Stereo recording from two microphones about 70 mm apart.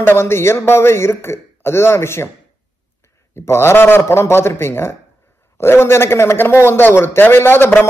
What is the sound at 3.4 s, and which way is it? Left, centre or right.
A man's voice, left.